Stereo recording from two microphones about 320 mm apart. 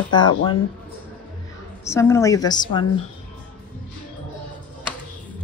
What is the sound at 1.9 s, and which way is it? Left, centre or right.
Speech, centre.